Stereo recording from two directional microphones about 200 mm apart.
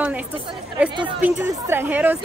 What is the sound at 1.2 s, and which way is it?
Speech, 10° right (ahead or behind).